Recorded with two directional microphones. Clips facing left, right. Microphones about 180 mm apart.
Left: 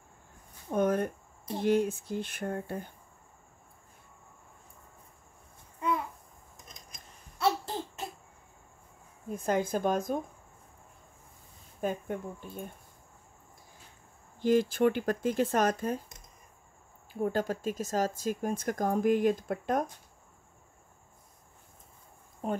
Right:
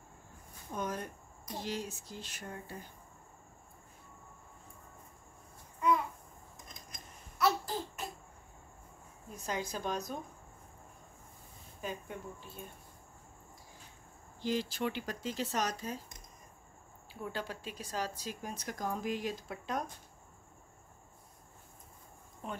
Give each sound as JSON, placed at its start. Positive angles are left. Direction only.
{"t": 0.7, "sound": "speech", "side_deg": 55}
{"t": 7.3, "sound": "babbling", "side_deg": 25}
{"t": 9.3, "sound": "speech", "side_deg": 55}
{"t": 11.8, "sound": "speech", "side_deg": 50}
{"t": 14.4, "sound": "speech", "side_deg": 50}
{"t": 17.1, "sound": "speech", "side_deg": 50}
{"t": 22.4, "sound": "speech", "side_deg": 45}